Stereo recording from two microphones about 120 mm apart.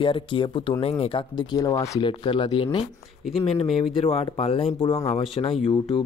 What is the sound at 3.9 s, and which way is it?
Speech, 50° left (ahead or behind).